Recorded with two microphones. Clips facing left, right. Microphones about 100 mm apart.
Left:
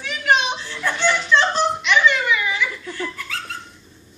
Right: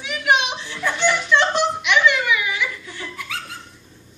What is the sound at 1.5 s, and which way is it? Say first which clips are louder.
Giggle: even; 10° right (ahead or behind).